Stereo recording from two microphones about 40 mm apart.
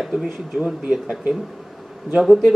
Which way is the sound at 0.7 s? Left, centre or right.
Centre.